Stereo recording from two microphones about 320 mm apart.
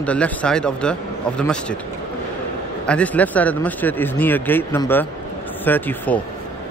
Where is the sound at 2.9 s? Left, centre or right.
Centre.